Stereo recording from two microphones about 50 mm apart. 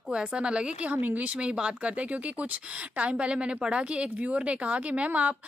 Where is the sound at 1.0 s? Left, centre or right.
Right.